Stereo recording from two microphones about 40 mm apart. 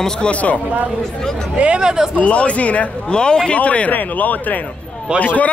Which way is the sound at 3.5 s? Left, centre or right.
Left.